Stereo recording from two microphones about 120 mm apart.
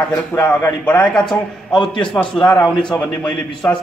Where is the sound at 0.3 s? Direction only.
25° left (ahead or behind).